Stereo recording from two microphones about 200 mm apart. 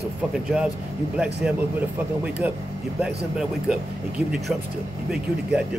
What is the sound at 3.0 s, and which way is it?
Speech, 5° right (ahead or behind).